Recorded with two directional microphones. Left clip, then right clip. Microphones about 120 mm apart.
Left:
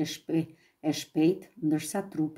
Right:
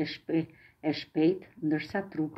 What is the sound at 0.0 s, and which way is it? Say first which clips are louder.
Speech: even; 55° left (ahead or behind).